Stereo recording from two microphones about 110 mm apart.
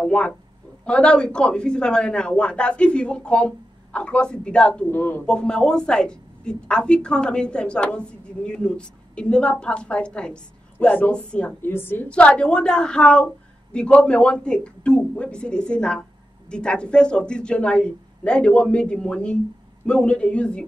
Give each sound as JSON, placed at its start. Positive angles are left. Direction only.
{"t": 0.0, "sound": "a sound", "side_deg": 10}
{"t": 0.8, "sound": "a woman's voice", "side_deg": 10}
{"t": 5.2, "sound": "a woman's voice", "side_deg": 10}